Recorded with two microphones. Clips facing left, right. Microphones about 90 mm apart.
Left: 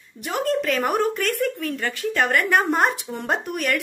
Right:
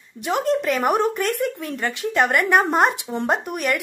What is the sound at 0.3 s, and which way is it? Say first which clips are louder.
Speech: right 2 dB; 20° right (ahead or behind).